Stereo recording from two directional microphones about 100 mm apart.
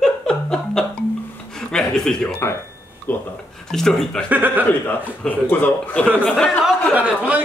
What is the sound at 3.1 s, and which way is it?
Speech, 15° left (ahead or behind).